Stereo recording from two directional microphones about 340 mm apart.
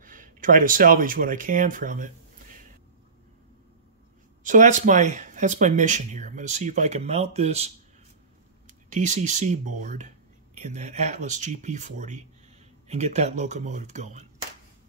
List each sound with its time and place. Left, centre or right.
0.0 s speech: right
4.4 s speech: right